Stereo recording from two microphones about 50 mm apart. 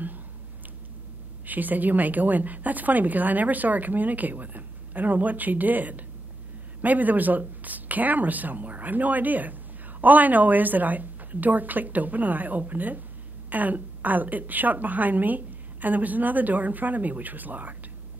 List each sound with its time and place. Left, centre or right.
1.4 s speech: right